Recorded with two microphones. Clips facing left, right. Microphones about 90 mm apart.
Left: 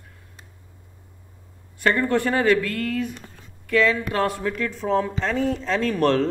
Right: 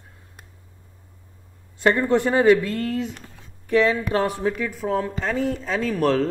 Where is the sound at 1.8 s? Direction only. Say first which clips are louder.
Right 2 dB; 20° right (ahead or behind).